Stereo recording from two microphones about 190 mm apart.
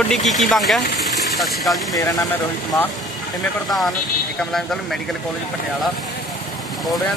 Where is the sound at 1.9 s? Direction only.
20° left (ahead or behind).